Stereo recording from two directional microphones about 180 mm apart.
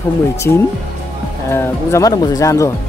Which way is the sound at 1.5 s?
15° left (ahead or behind).